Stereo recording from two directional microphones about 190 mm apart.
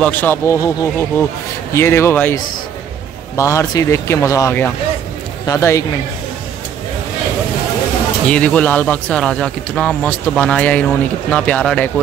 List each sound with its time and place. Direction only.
0.0 s speech: 10° left (ahead or behind)
8.3 s speech: 5° left (ahead or behind)